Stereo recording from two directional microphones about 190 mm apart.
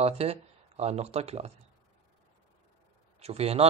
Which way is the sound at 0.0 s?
35° right (ahead or behind).